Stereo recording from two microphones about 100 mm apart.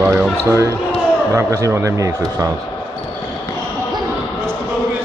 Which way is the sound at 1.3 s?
30° right (ahead or behind).